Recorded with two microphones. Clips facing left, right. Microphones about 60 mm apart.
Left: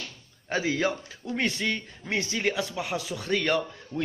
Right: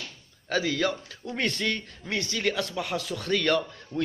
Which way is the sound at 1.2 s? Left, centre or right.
Centre.